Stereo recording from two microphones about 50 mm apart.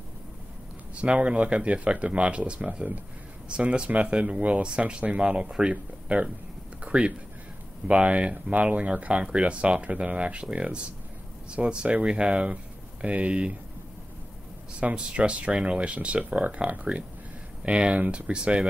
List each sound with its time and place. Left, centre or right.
0.9 s speech: right
6.8 s a sound: right
7.9 s speech: right
14.7 s speech: right